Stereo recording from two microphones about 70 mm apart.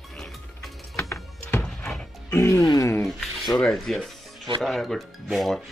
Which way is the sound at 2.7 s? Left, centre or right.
Left.